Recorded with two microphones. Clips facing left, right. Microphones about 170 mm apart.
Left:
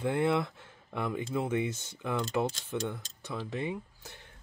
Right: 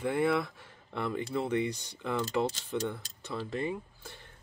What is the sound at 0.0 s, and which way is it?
Speech, 20° left (ahead or behind).